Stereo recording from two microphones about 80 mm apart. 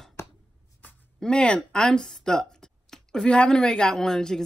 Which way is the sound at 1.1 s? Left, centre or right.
Centre.